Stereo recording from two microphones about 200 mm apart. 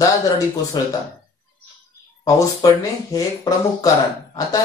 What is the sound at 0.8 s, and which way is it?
Speech, 20° left (ahead or behind).